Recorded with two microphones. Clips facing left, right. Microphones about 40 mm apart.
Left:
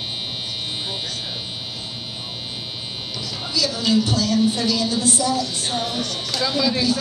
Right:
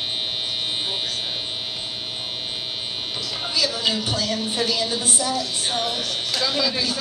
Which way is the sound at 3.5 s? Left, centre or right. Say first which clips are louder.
Left 2 dB; right.